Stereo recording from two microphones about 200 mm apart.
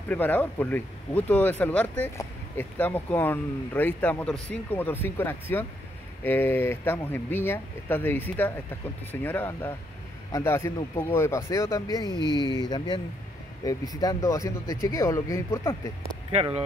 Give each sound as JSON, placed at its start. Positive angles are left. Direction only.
{"t": 0.1, "sound": "speech", "side_deg": 10}
{"t": 16.3, "sound": "speech", "side_deg": -30}